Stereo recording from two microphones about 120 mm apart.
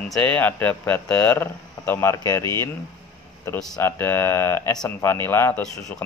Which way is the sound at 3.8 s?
20° left (ahead or behind).